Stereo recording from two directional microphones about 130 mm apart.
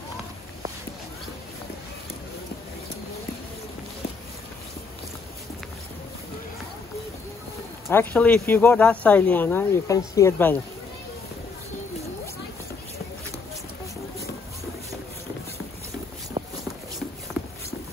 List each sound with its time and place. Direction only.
7.9 s speech: 15° left (ahead or behind)
16.4 s shuffle: 50° right (ahead or behind)